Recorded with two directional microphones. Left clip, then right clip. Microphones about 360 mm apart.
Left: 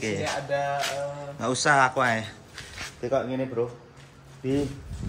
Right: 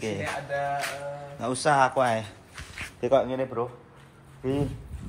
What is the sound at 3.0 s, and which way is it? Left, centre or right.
Speech, right.